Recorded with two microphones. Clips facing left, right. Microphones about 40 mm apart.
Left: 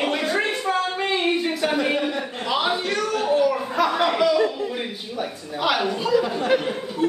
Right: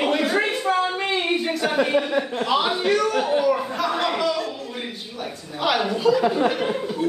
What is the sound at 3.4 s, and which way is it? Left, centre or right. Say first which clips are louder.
A man's voice: left 1 dB; centre.